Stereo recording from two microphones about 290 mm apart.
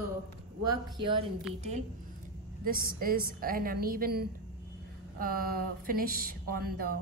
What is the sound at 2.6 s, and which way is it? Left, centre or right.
A woman's voice, right.